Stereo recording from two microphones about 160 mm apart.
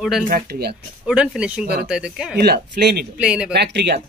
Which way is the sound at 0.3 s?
85° right.